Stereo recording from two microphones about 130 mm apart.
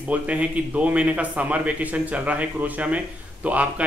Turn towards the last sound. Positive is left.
turn(degrees=-10)  # may be behind; listen again after turning